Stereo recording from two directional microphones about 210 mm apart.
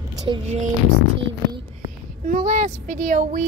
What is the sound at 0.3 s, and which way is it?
Speech, 20° right (ahead or behind).